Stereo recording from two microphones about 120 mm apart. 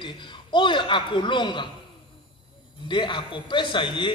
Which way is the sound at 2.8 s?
40° left (ahead or behind).